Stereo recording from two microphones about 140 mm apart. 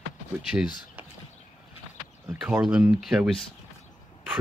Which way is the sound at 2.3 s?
5° right (ahead or behind).